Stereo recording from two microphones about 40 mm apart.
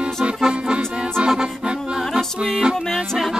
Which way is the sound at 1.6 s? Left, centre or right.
Right.